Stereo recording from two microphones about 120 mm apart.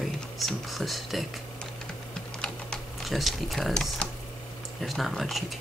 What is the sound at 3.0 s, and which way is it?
Speech, centre (ahead or behind).